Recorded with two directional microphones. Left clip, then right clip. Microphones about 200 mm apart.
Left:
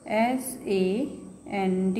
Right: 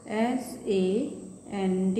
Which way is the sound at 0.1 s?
50° left (ahead or behind).